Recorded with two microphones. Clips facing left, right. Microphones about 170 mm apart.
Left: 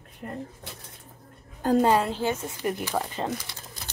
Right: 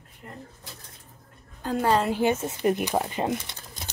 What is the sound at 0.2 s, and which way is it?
Speech, 60° left (ahead or behind).